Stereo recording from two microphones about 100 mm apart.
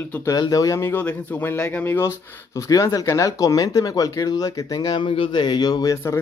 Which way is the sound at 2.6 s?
35° left (ahead or behind).